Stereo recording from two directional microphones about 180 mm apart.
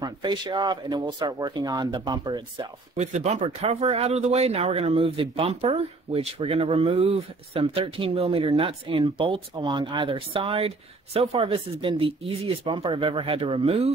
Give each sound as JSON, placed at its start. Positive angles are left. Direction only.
{"t": 0.0, "sound": "speech", "side_deg": -25}
{"t": 3.0, "sound": "speech", "side_deg": -40}